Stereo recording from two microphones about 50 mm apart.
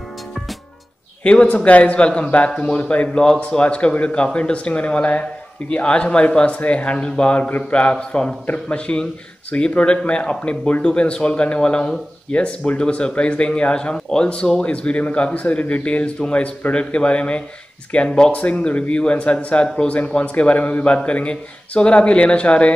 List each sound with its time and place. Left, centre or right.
1.2 s a man's voice: left